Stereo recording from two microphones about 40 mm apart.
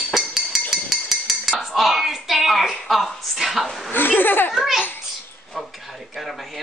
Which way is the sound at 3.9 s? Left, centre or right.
Left.